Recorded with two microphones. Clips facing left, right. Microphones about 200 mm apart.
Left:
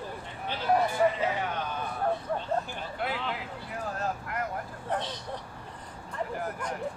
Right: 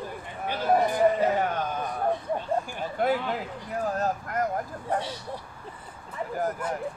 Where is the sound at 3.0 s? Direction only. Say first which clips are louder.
Right 8 dB; 45° right (ahead or behind).